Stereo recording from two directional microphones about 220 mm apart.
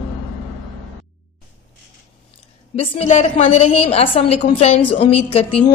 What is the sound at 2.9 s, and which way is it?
A woman's voice, 30° left (ahead or behind).